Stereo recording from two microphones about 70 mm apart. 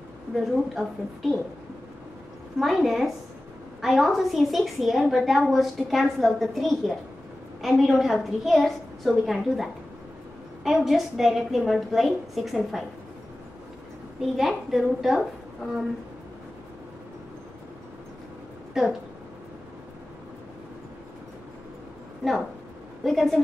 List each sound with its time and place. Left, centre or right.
0.3 s a woman's voice: centre
2.6 s a woman's voice: centre
14.3 s a woman's voice: centre
18.7 s speech: centre
23.0 s a woman's voice: centre